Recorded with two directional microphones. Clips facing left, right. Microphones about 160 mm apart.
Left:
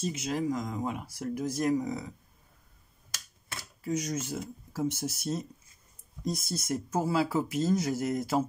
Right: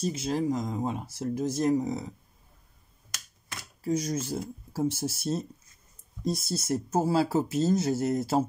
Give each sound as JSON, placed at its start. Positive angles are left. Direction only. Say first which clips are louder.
{"t": 0.0, "sound": "speech", "louder": "right 3 dB", "side_deg": -35}
{"t": 3.8, "sound": "speech", "louder": "right 3 dB", "side_deg": -35}